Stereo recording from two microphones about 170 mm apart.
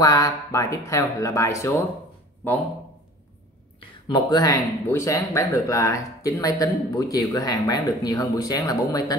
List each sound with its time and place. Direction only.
0.0 s speech: 20° left (ahead or behind)
4.1 s speech: 25° left (ahead or behind)